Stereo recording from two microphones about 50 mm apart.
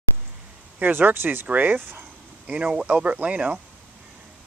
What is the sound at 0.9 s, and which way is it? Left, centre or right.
Speech, right.